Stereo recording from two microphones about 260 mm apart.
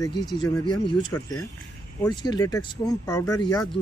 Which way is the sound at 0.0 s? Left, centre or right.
Centre.